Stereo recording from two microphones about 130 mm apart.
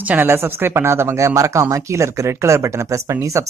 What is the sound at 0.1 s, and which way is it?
Speech, 15° right (ahead or behind).